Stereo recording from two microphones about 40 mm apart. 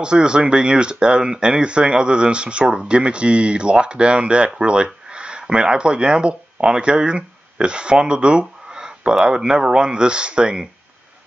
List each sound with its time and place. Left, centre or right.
0.0 s speech: right